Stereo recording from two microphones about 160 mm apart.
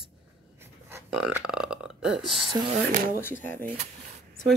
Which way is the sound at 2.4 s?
35° right (ahead or behind).